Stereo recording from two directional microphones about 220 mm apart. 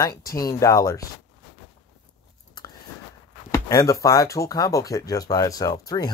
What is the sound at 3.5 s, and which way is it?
Speech, 15° left (ahead or behind).